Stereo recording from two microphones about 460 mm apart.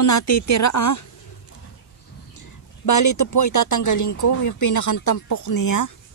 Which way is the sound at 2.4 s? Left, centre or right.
Left.